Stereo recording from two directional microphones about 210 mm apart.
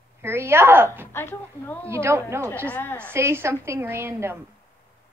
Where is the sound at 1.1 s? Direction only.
10° left (ahead or behind).